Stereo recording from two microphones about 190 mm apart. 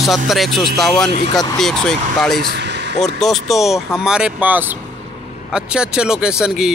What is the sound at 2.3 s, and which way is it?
Vehicle, 60° right (ahead or behind).